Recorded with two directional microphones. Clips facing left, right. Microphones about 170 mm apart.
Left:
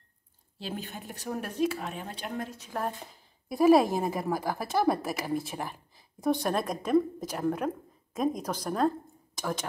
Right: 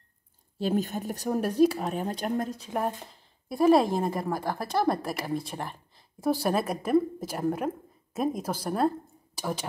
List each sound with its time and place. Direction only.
0.6 s speech: 45° right (ahead or behind)
2.8 s speech: centre (ahead or behind)